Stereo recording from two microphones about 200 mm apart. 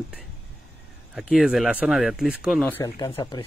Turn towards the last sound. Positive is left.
turn(degrees=25)  # may be behind; listen again after turning